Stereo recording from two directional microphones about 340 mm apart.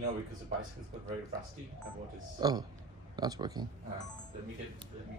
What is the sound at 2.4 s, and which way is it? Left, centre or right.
Speech, centre.